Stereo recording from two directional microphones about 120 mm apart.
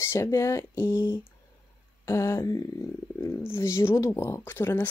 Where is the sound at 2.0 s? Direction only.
20° left (ahead or behind).